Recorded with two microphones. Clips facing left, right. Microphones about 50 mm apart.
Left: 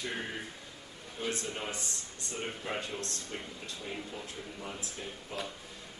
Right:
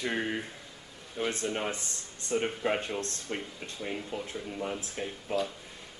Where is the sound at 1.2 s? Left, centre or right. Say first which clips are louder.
Right 5 dB; right.